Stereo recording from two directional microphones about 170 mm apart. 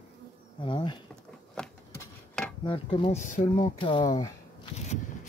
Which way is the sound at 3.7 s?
30° left (ahead or behind).